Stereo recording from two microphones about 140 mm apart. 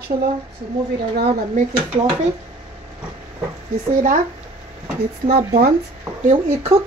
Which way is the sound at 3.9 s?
80° right.